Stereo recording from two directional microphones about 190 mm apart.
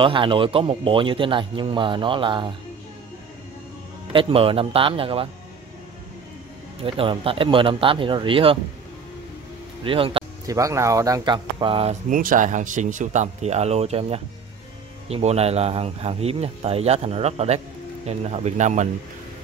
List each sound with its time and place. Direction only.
0.0 s speech: 25° right (ahead or behind)
4.1 s speech: 30° right (ahead or behind)
6.8 s speech: 30° right (ahead or behind)
9.8 s music: 30° right (ahead or behind)
10.5 s speech: 15° right (ahead or behind)
12.1 s speech: 45° right (ahead or behind)